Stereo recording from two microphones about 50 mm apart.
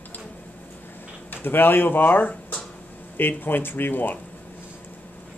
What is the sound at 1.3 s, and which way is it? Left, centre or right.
Speech, left.